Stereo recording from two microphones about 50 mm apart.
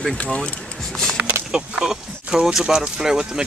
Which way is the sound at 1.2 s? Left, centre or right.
Right.